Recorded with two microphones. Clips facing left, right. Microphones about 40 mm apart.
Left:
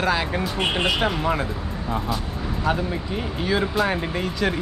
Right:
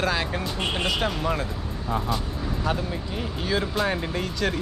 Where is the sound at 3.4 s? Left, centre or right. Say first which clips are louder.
Left 3 dB; centre.